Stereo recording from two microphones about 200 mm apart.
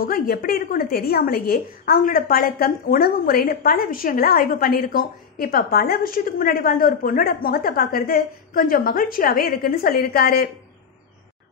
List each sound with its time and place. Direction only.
0.0 s a woman's voice: 45° left (ahead or behind)